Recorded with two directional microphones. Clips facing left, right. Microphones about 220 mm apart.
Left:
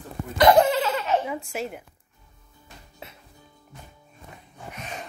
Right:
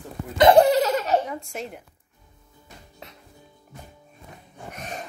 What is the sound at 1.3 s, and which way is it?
Speech, 5° left (ahead or behind).